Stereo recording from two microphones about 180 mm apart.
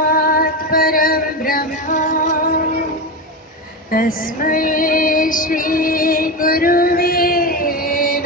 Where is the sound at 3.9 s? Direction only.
50° left (ahead or behind).